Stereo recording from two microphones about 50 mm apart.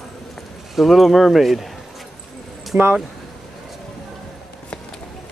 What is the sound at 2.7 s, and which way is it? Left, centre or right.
Speech, right.